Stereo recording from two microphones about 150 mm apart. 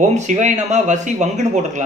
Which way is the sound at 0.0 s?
50° right (ahead or behind).